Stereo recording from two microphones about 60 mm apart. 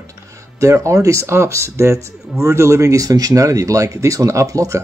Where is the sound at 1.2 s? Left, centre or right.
Right.